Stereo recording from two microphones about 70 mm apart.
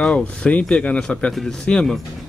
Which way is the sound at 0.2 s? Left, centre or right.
Centre.